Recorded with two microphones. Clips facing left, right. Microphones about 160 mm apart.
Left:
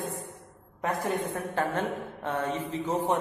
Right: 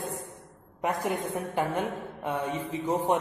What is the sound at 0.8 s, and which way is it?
A man's voice, 15° right (ahead or behind).